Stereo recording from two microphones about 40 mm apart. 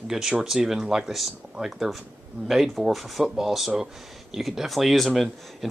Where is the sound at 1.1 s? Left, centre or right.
Centre.